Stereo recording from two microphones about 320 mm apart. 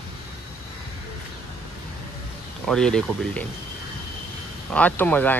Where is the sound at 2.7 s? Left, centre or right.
Centre.